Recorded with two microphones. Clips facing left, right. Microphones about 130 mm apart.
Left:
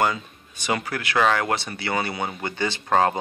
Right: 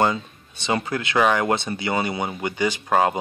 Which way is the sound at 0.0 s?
25° right (ahead or behind).